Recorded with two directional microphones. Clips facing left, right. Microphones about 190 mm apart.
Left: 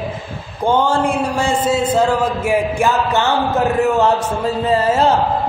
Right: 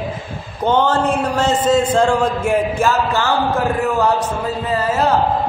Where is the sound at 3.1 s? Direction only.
20° left (ahead or behind).